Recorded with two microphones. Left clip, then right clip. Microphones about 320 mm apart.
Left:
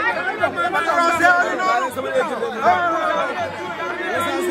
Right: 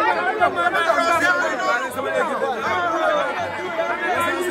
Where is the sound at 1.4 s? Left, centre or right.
Centre.